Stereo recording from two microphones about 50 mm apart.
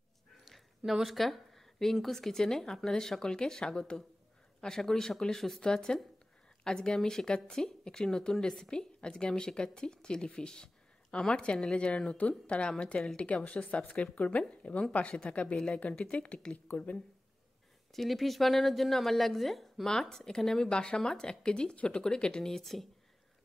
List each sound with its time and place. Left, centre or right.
0.5 s a woman's voice: centre; by 15.5 s left
15.5 s a woman's voice: centre
17.9 s a woman's voice: centre